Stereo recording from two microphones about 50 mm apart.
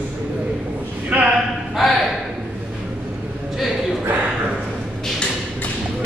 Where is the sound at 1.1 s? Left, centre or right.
Right.